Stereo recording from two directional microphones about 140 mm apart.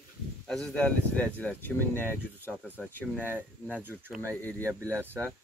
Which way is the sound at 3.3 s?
15° right (ahead or behind).